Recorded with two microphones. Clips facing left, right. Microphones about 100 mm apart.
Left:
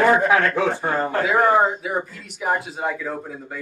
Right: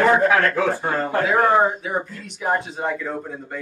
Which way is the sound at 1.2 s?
5° left (ahead or behind).